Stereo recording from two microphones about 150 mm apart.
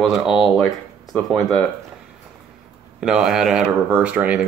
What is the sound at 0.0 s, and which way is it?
Speech, 5° right (ahead or behind).